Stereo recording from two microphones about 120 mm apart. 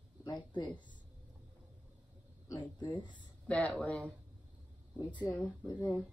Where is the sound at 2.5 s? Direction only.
35° left (ahead or behind).